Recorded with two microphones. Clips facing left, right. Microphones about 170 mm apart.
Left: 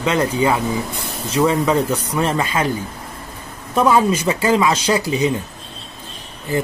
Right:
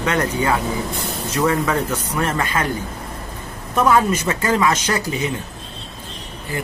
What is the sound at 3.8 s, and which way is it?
Speech, 10° left (ahead or behind).